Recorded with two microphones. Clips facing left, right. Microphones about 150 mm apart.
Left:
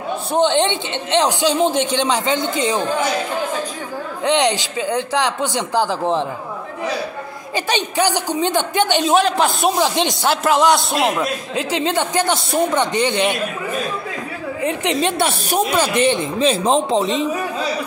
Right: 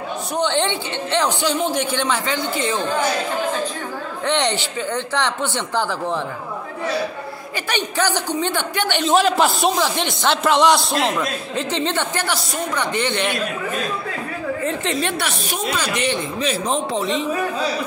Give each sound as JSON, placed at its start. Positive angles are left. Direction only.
{"t": 0.3, "sound": "speech", "side_deg": 20}
{"t": 4.2, "sound": "a man's voice", "side_deg": 10}
{"t": 7.5, "sound": "a man's voice", "side_deg": 15}
{"t": 9.1, "sound": "speech", "side_deg": 0}
{"t": 9.8, "sound": "a man's voice", "side_deg": 15}
{"t": 10.3, "sound": "a man's voice", "side_deg": 0}
{"t": 14.6, "sound": "speech", "side_deg": 15}